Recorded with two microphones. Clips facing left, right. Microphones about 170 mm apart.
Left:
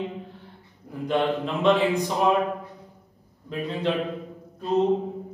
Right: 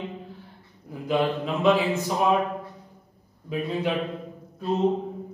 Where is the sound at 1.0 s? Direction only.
5° right (ahead or behind).